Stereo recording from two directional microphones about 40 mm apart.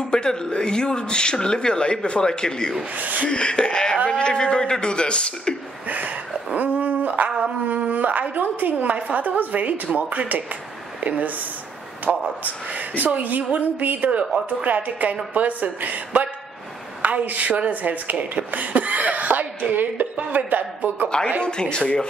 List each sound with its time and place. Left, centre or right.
0.1 s speech: centre
3.0 s speech: right
3.3 s speech: left
5.9 s a sound: right
7.6 s a woman's voice: right
12.1 s speech: right
12.7 s a woman's voice: right
17.0 s speech: right
21.4 s speech: left